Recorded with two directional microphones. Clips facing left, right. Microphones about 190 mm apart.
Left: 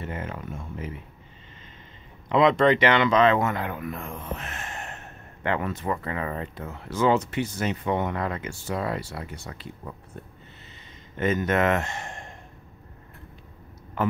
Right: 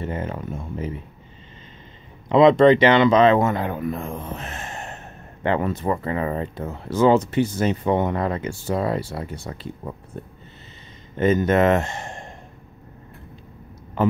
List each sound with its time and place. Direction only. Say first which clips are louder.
0.0 s speech: right 6 dB; 30° right (ahead or behind)
2.2 s speech: right 6 dB; 30° right (ahead or behind)
11.1 s speech: right 6 dB; 30° right (ahead or behind)